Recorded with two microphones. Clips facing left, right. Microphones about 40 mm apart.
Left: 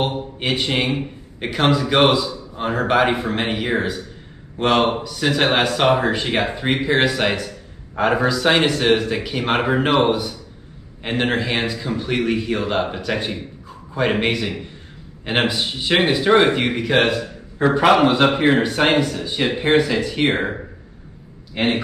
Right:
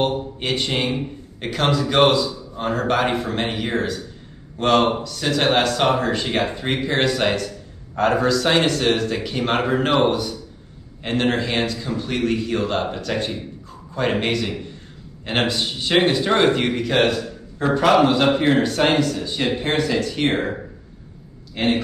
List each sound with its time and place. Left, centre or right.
0.0 s speech: centre
21.5 s speech: left